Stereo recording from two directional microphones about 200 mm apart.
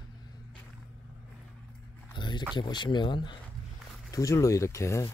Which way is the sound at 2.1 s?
20° left (ahead or behind).